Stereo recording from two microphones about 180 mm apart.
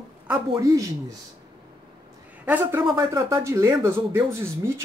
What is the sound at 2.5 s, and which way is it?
Speech, 10° right (ahead or behind).